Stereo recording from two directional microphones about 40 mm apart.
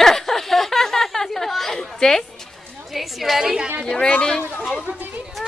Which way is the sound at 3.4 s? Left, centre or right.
Centre.